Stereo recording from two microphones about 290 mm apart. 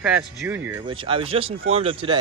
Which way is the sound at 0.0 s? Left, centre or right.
Centre.